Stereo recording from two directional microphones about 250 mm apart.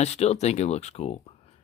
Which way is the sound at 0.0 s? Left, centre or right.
Left.